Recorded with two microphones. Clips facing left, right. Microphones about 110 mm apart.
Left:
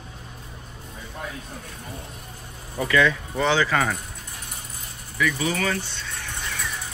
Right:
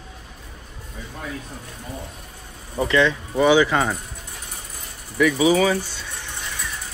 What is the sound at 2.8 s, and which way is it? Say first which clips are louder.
Speech: right 2 dB; 25° right (ahead or behind).